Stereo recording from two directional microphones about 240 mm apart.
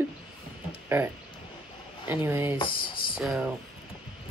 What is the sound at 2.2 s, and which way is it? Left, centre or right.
Speech, centre.